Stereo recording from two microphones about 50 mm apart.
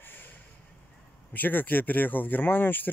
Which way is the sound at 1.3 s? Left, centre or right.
Left.